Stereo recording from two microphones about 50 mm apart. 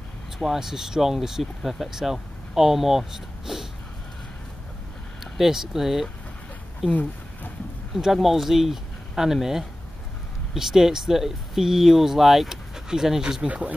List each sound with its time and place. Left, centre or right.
0.4 s speech: centre
5.2 s speech: centre
6.9 s a sound: left
7.9 s speech: centre
13.5 s speech: right